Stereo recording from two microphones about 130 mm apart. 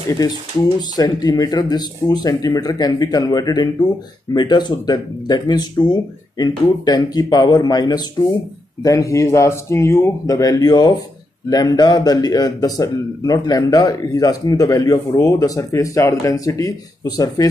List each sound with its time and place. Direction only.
0.7 s speech: 30° left (ahead or behind)